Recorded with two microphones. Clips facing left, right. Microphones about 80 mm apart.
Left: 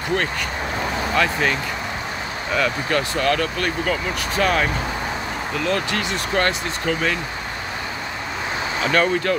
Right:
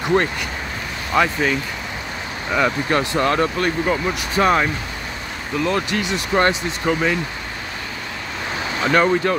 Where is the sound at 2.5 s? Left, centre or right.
Right.